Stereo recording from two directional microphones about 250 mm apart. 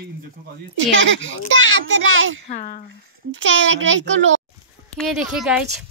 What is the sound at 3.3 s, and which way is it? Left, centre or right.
A child's voice, right.